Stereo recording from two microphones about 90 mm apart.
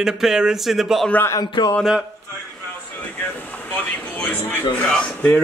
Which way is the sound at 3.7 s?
20° left (ahead or behind).